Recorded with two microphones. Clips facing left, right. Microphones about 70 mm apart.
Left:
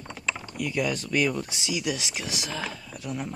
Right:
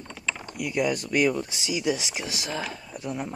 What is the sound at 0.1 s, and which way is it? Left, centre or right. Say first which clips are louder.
Typing: left 1 dB; centre.